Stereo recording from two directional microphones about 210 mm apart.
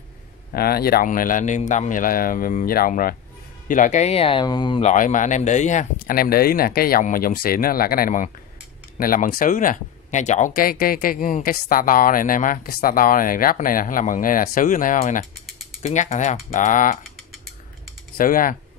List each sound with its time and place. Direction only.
0.5 s speech: 45° left (ahead or behind); by 4.9 s 25° left (ahead or behind)
4.9 s speech: 40° left (ahead or behind)
18.1 s speech: 40° left (ahead or behind)